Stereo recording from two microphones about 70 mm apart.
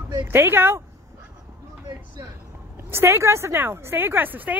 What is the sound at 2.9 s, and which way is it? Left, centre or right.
A woman's voice, right.